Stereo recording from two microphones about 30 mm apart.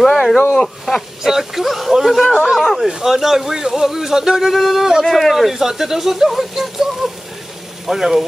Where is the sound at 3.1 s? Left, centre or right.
Centre.